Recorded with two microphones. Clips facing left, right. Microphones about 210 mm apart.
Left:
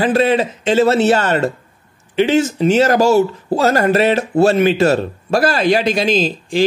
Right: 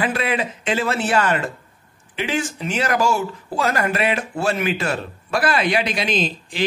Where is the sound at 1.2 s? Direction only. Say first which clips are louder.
Left 6 dB; 40° left (ahead or behind).